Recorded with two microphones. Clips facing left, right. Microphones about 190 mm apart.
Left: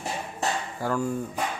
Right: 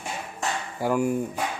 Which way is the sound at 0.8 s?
15° right (ahead or behind).